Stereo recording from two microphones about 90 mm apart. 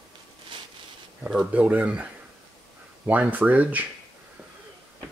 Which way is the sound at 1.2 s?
15° right (ahead or behind).